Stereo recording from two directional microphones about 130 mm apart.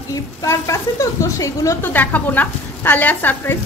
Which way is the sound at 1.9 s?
15° left (ahead or behind).